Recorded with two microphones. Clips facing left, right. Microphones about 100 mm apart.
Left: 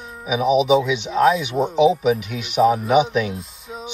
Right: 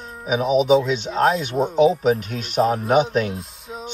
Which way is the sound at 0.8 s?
45° right (ahead or behind).